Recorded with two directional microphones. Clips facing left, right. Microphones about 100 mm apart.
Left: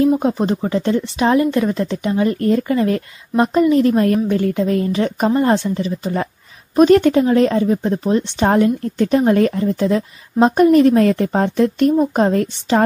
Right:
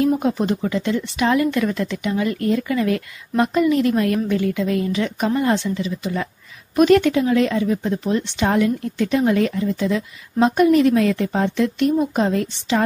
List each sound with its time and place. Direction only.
0.2 s speech: 30° left (ahead or behind)